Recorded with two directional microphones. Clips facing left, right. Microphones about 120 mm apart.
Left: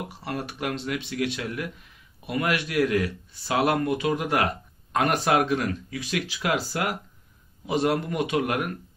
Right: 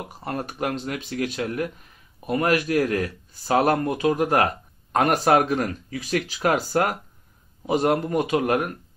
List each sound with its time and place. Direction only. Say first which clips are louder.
0.2 s speech: right 4 dB; 40° right (ahead or behind)